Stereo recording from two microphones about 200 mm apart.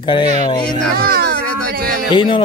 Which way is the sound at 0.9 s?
50° right (ahead or behind).